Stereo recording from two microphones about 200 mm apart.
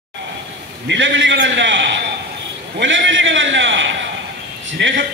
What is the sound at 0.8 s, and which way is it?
A man's voice, 65° right (ahead or behind).